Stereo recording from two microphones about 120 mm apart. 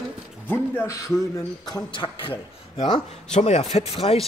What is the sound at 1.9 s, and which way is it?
A man's voice, 40° left (ahead or behind).